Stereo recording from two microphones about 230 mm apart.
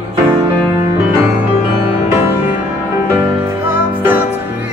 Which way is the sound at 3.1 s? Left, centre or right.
Centre.